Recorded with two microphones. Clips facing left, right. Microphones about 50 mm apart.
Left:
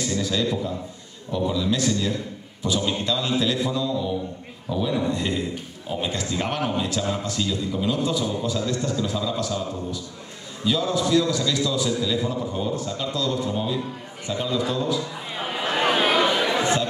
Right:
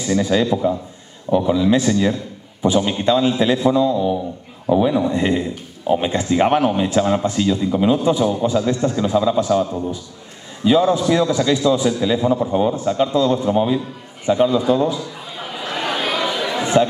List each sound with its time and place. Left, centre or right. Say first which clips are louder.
0.1 s a man's voice: right 10 dB; right
15.6 s chatter: left 1 dB; left
16.5 s chatter: right 5 dB; right